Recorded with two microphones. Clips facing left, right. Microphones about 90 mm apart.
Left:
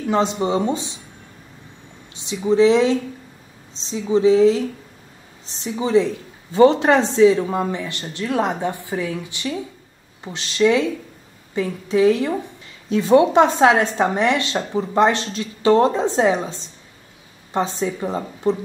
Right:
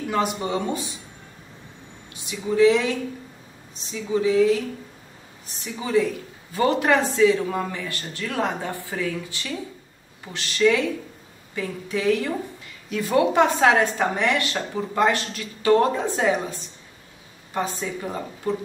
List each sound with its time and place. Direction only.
0.1 s a woman's voice: 25° left (ahead or behind)
2.1 s a woman's voice: 25° left (ahead or behind)